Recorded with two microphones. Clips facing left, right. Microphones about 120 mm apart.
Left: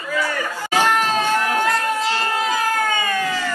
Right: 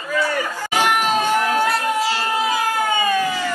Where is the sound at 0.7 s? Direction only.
15° right (ahead or behind).